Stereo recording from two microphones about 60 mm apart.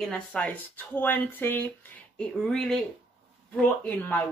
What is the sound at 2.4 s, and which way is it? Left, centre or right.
Speech, centre.